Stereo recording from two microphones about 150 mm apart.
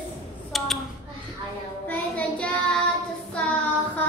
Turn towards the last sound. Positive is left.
turn(degrees=10)  # may be behind; listen again after turning